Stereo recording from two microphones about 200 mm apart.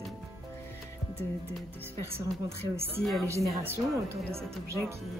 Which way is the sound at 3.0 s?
Centre (ahead or behind).